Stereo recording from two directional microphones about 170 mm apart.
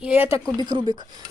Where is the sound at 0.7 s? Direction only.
25° right (ahead or behind).